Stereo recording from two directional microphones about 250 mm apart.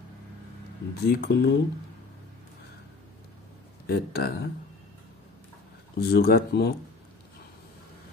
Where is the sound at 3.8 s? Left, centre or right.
Left.